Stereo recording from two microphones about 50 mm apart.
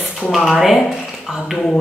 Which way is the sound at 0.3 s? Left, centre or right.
Centre.